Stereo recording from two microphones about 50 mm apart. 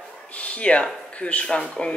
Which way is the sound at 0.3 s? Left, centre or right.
Left.